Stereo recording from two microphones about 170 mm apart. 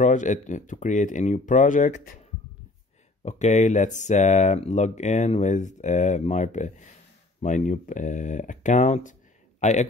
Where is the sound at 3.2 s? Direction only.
40° left (ahead or behind).